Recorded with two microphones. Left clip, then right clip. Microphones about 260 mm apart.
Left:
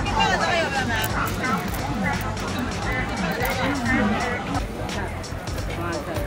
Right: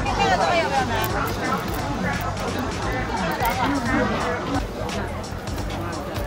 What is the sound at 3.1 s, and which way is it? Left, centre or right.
Music, centre.